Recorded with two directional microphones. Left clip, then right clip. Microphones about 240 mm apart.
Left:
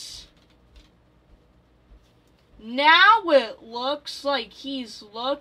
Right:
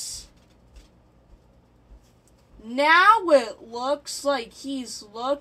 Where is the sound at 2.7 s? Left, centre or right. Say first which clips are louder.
Left 1 dB; left.